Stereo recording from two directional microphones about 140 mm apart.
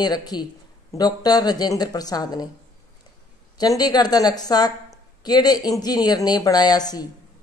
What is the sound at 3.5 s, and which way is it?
A woman's voice, 30° left (ahead or behind).